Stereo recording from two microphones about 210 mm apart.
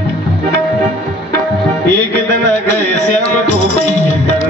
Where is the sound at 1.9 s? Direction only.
55° right (ahead or behind).